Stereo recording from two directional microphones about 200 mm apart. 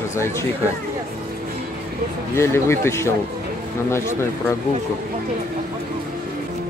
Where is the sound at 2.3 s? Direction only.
15° left (ahead or behind).